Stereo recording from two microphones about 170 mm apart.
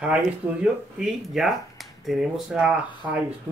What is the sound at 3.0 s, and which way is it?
Speech, 15° right (ahead or behind).